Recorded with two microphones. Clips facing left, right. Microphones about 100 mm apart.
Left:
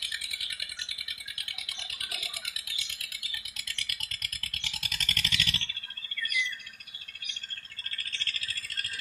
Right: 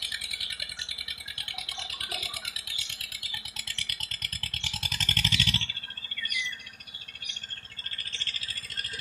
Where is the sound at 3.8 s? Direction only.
35° right (ahead or behind).